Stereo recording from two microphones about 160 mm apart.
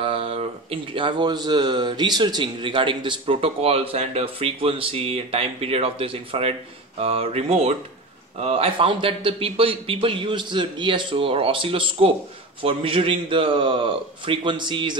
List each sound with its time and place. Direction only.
0.0 s a man's voice: 35° right (ahead or behind)